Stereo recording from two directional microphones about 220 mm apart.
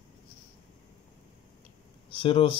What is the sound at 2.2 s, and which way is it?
Speech, 25° left (ahead or behind).